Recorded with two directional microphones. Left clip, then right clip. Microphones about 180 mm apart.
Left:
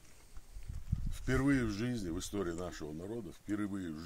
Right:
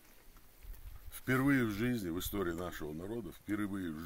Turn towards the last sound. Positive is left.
turn(degrees=15)  # may be behind; listen again after turning